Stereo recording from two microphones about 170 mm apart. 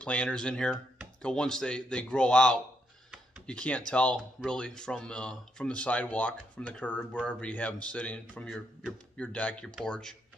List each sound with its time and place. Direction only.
0.0 s speech: 5° left (ahead or behind)